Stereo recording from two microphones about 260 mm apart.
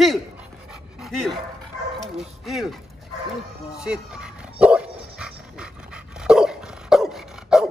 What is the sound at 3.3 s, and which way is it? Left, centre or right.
Dog, centre.